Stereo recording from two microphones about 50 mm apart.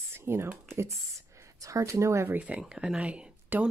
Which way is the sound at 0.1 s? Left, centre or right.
Right.